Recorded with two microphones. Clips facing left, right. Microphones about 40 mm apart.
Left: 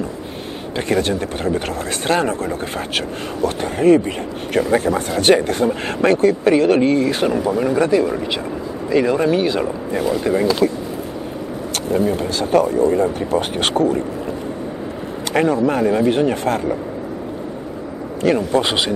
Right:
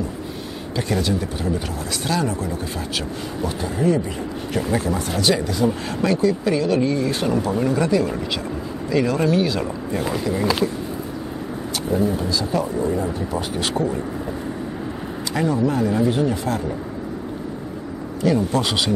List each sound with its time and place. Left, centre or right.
0.7 s speech: left
3.4 s speech: left
7.3 s speech: centre
10.6 s speech: left
11.9 s speech: left
15.3 s speech: left
18.5 s speech: left